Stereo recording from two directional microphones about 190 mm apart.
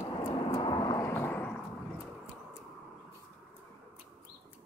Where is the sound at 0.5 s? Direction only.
25° left (ahead or behind); by 1.6 s 10° left (ahead or behind).